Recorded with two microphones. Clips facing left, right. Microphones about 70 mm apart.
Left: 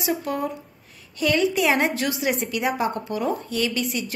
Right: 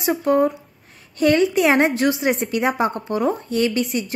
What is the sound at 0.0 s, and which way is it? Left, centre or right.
A woman's voice, right.